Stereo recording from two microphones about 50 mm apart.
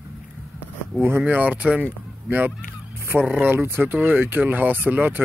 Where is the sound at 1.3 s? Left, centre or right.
Right.